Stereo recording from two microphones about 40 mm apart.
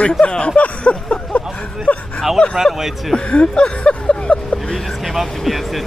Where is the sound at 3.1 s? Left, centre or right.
Centre.